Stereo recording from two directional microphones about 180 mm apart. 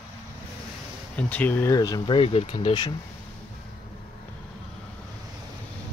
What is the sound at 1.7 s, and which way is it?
Speech, 20° left (ahead or behind).